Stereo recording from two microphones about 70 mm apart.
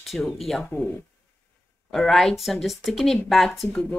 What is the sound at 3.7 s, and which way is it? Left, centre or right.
Speech, centre.